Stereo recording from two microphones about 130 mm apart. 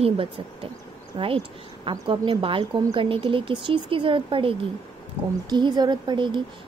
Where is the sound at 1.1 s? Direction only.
35° right (ahead or behind).